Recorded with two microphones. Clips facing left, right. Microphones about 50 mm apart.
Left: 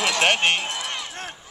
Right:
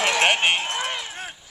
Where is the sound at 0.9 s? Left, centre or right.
Centre.